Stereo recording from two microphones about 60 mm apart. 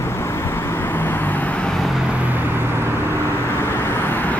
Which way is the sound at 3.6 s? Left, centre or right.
Left.